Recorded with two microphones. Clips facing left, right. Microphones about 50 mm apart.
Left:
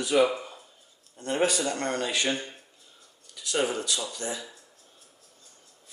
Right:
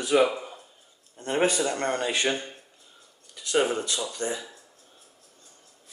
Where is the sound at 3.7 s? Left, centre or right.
Right.